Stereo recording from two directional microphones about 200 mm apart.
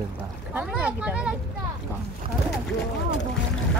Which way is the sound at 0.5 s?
10° right (ahead or behind).